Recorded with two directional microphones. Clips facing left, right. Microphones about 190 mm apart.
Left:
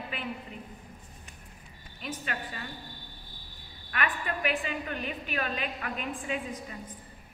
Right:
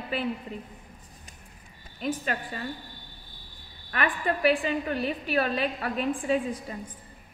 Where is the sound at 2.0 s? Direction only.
40° right (ahead or behind).